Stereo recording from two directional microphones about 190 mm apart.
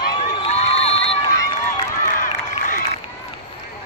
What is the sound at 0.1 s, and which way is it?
Crowd, 30° left (ahead or behind).